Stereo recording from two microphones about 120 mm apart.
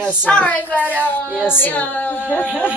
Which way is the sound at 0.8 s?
15° right (ahead or behind).